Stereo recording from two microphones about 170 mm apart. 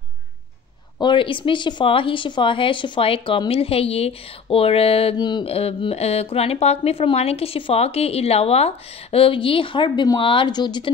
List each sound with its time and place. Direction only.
1.0 s a woman's voice: 30° left (ahead or behind)